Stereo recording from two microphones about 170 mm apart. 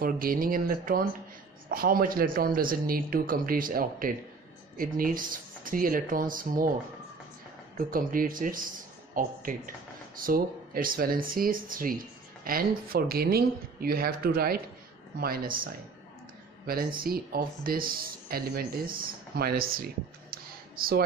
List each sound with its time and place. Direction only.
0.0 s speech: 55° right (ahead or behind)
7.9 s speech: 55° right (ahead or behind)